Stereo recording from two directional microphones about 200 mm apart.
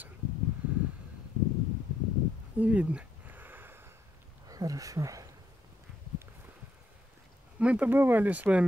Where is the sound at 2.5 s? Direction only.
5° right (ahead or behind).